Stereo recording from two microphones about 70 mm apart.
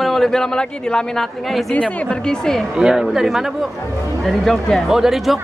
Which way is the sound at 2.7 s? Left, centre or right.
Centre.